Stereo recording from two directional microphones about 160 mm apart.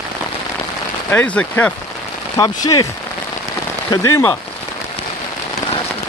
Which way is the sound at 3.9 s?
20° left (ahead or behind).